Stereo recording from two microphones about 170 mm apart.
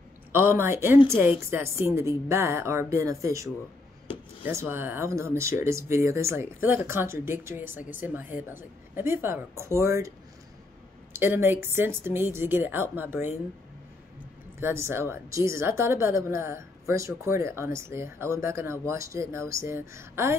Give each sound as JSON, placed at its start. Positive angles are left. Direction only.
{"t": 0.3, "sound": "speech", "side_deg": -15}
{"t": 4.5, "sound": "speech", "side_deg": -15}
{"t": 11.1, "sound": "speech", "side_deg": -15}
{"t": 14.6, "sound": "speech", "side_deg": -15}